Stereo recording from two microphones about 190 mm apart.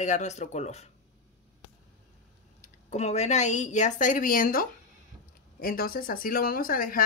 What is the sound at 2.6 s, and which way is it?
A woman's voice, 35° left (ahead or behind).